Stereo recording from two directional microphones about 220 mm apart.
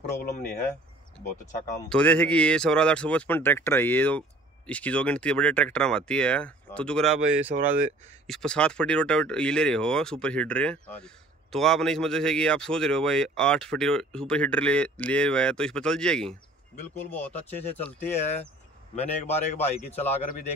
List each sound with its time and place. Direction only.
0.0 s speech: 40° left (ahead or behind)
1.9 s speech: 5° left (ahead or behind)
7.5 s speech: 40° right (ahead or behind)
8.3 s speech: 5° left (ahead or behind)
18.9 s speech: 30° left (ahead or behind)